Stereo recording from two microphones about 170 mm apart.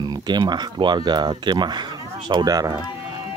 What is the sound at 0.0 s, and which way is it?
Speech, 25° right (ahead or behind).